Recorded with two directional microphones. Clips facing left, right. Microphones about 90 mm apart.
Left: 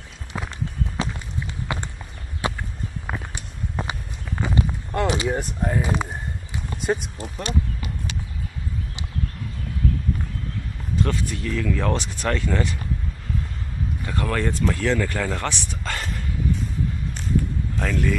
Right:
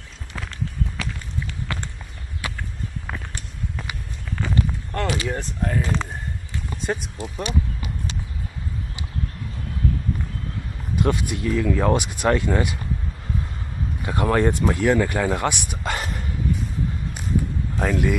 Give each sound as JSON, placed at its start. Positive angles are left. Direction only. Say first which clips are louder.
{"t": 0.3, "sound": "walk", "louder": "left 1 dB", "side_deg": 20}
{"t": 2.4, "sound": "a sound", "louder": "left 6 dB", "side_deg": 25}
{"t": 3.1, "sound": "a sound", "louder": "left 2 dB", "side_deg": 10}
{"t": 3.8, "sound": "walk", "louder": "left 7 dB", "side_deg": 25}
{"t": 4.4, "sound": "walk", "louder": "even", "side_deg": 15}
{"t": 5.2, "sound": "speech", "louder": "left 2 dB", "side_deg": 15}
{"t": 7.0, "sound": "speech", "louder": "right 2 dB", "side_deg": -5}
{"t": 11.0, "sound": "speech", "louder": "right 3 dB", "side_deg": -10}
{"t": 14.0, "sound": "speech", "louder": "right 6 dB", "side_deg": -20}
{"t": 17.7, "sound": "speech", "louder": "right 3 dB", "side_deg": -15}